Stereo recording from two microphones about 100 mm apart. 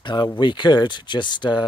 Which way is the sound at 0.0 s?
50° left (ahead or behind).